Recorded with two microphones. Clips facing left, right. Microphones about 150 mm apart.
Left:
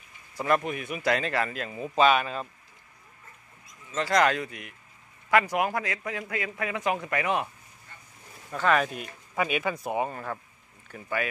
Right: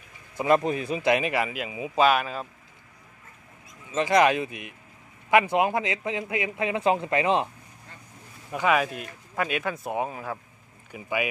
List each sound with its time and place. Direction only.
0.6 s a man's voice: 30° right (ahead or behind)
1.1 s speech: 10° right (ahead or behind)
3.9 s a man's voice: 15° right (ahead or behind)
8.5 s speech: 10° right (ahead or behind)